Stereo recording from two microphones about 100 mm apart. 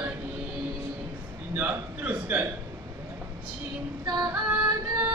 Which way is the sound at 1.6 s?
15° right (ahead or behind).